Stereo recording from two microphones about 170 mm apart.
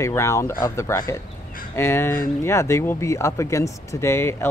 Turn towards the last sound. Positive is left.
turn(degrees=15)  # may be behind; listen again after turning